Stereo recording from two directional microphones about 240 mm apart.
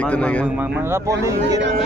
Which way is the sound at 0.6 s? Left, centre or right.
Centre.